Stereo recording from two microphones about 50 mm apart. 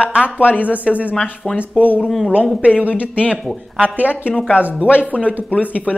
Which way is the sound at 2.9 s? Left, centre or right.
Left.